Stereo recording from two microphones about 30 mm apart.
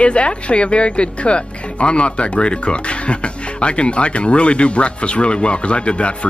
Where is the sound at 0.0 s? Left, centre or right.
Left.